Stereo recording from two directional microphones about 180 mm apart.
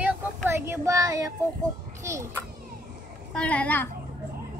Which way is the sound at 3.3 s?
5° left (ahead or behind).